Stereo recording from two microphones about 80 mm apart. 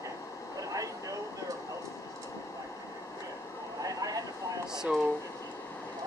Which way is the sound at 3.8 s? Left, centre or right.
Right.